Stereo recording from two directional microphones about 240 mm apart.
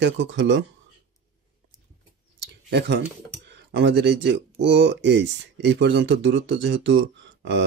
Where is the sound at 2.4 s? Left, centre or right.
Right.